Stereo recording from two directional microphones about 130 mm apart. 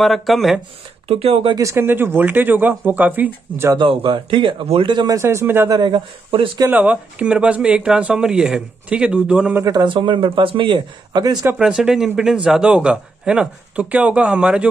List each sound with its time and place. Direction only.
0.0 s speech: centre (ahead or behind)
1.0 s speech: 50° right (ahead or behind)
1.5 s a man's voice: 25° right (ahead or behind)
3.7 s a man's voice: 40° right (ahead or behind)
5.1 s speech: 25° right (ahead or behind)
5.7 s a man's voice: 35° right (ahead or behind)
6.7 s a man's voice: 10° right (ahead or behind)
9.7 s a man's voice: 35° right (ahead or behind)
11.5 s a man's voice: 5° right (ahead or behind)